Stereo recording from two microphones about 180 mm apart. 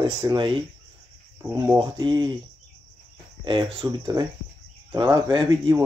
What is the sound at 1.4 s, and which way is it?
Speech, 10° right (ahead or behind).